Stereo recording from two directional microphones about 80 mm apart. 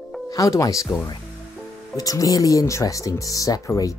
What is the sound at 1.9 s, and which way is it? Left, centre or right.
Speech, left.